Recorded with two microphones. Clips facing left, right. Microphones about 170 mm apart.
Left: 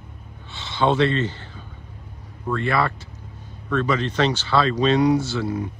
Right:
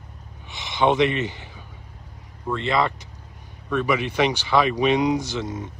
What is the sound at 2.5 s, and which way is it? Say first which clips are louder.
Speech: even; 20° right (ahead or behind).